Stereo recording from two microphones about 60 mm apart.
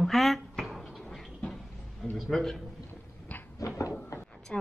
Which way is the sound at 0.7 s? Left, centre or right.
Centre.